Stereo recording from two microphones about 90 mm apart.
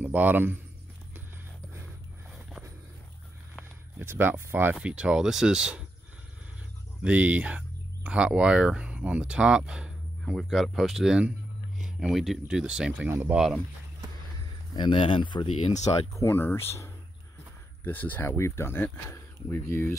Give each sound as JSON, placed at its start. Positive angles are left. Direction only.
{"t": 0.0, "sound": "speech", "side_deg": -20}
{"t": 4.0, "sound": "speech", "side_deg": -25}
{"t": 4.7, "sound": "speech", "side_deg": -10}
{"t": 7.0, "sound": "speech", "side_deg": -15}
{"t": 10.3, "sound": "speech", "side_deg": 0}
{"t": 14.8, "sound": "speech", "side_deg": 70}
{"t": 16.1, "sound": "speech", "side_deg": 30}